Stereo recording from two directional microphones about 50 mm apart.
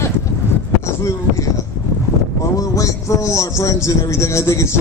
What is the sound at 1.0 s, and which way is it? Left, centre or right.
A man's voice, left.